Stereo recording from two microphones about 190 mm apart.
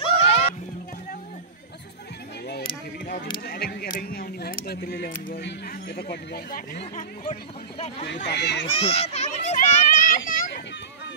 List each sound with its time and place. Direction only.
0.2 s music: 30° left (ahead or behind)
3.4 s a sound: 55° left (ahead or behind)
4.0 s speech: 50° left (ahead or behind)
6.8 s speech: 30° left (ahead or behind)
8.3 s speech: 65° left (ahead or behind)
8.6 s children playing: 35° left (ahead or behind)